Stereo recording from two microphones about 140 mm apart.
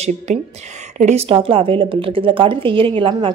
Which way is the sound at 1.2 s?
40° right (ahead or behind).